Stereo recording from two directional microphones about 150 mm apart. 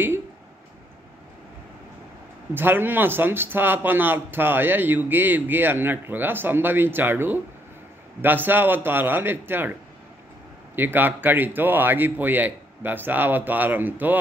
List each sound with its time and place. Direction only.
2.5 s speech: 15° right (ahead or behind)
10.8 s speech: 15° right (ahead or behind)